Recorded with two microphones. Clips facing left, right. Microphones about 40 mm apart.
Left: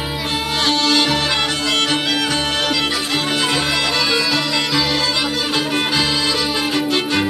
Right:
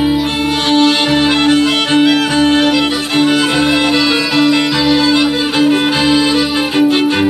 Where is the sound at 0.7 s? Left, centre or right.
Right.